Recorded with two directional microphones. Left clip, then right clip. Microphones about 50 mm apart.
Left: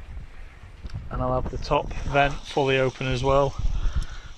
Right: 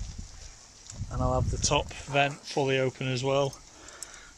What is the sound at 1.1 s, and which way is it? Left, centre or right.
Speech, right.